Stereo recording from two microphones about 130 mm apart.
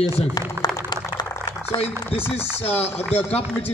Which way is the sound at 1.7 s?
50° left (ahead or behind).